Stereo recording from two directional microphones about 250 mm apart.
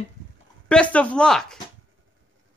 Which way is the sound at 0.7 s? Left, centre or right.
Centre.